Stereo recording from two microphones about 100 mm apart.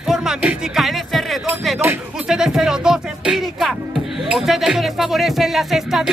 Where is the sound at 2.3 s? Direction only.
5° right (ahead or behind).